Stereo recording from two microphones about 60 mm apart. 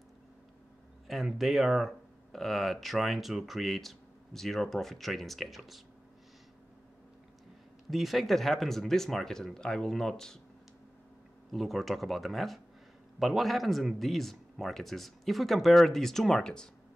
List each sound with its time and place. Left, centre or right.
1.0 s speech: centre
7.9 s speech: centre
11.5 s speech: centre